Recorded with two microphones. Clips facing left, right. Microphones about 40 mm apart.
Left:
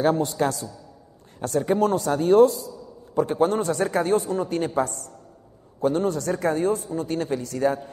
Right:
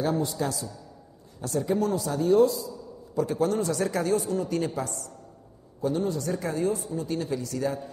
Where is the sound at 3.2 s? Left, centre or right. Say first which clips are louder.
Left 4 dB; left.